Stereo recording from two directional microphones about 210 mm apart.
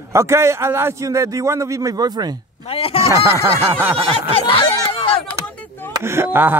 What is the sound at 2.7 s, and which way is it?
Speech, 25° left (ahead or behind).